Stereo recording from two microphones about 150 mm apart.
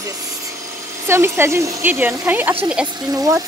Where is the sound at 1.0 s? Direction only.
15° right (ahead or behind).